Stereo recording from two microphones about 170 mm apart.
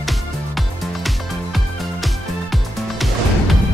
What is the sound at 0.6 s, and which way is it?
Music, centre (ahead or behind).